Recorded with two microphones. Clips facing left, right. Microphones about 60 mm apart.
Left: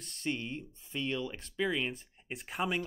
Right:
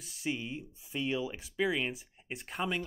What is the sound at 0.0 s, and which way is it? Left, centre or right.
Speech, centre.